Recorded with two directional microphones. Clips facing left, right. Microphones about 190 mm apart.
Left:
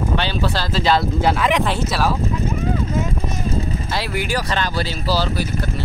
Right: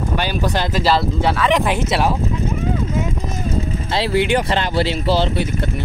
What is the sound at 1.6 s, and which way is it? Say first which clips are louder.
Speech: right 2 dB; 15° right (ahead or behind).